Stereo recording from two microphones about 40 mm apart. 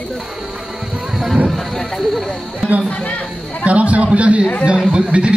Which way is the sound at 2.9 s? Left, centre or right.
Left.